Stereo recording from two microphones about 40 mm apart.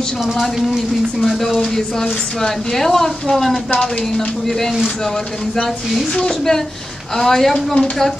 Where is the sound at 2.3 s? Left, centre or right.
Centre.